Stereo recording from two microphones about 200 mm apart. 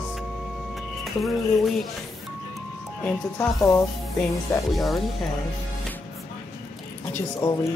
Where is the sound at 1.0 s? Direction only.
Centre (ahead or behind).